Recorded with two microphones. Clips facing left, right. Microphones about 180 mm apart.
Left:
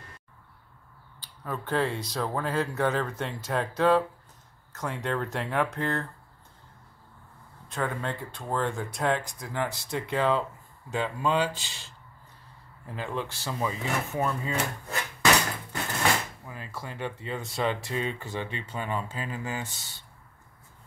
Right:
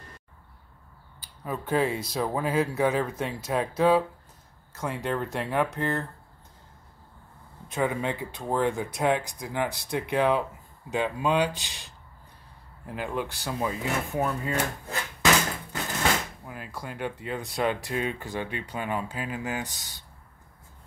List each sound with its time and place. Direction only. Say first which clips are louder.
1.2 s speech: right 2 dB; 10° right (ahead or behind)
7.6 s speech: right 4 dB; 15° right (ahead or behind)
9.2 s speech: right 3 dB; centre (ahead or behind)
9.5 s speech: right 2 dB; 10° right (ahead or behind)
16.4 s speech: right 1 dB; 10° right (ahead or behind)